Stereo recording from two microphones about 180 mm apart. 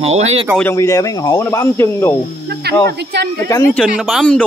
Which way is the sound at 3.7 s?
5° left (ahead or behind).